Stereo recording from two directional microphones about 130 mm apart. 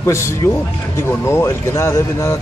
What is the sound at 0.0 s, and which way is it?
Speech, 20° left (ahead or behind).